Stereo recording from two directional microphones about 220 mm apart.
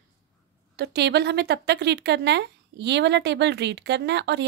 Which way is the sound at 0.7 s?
50° right (ahead or behind).